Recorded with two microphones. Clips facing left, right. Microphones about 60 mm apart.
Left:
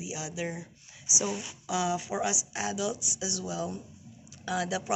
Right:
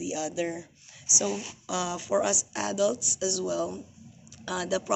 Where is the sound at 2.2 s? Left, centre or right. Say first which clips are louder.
Right 4 dB; centre.